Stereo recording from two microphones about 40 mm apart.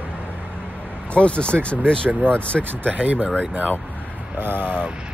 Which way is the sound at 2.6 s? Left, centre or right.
Right.